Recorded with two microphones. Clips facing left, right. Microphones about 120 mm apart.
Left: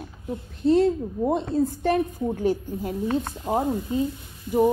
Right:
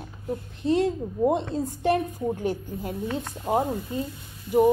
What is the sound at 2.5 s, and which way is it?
A woman's voice, 15° left (ahead or behind).